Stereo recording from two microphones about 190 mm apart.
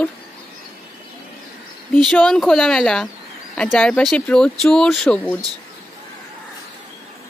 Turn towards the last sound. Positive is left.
turn(degrees=5)  # may be behind; listen again after turning